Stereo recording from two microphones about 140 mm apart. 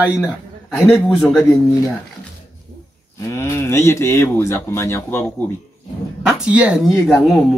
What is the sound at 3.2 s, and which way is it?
Speech, 20° left (ahead or behind).